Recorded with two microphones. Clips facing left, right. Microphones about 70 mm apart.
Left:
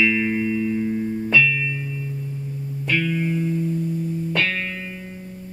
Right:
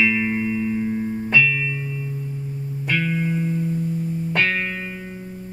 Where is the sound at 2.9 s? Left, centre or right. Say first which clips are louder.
Even; right.